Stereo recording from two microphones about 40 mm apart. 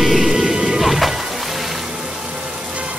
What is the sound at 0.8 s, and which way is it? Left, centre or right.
Music, centre.